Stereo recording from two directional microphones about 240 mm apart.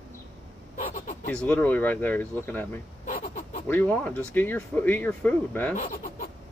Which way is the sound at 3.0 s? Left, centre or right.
Left.